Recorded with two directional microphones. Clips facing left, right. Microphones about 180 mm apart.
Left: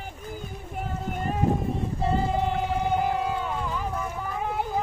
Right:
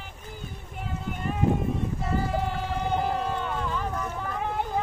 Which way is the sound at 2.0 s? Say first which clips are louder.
Left 3 dB; 30° left (ahead or behind).